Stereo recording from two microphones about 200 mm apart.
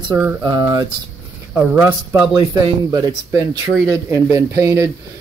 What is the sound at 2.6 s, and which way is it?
Speech, 20° right (ahead or behind).